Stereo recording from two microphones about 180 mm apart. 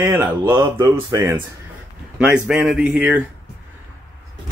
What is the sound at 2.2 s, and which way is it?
Speech, 5° right (ahead or behind).